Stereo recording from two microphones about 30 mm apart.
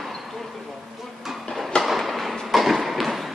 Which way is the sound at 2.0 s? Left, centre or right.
Centre.